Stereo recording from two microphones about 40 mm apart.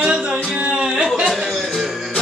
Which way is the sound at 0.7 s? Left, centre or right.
Right.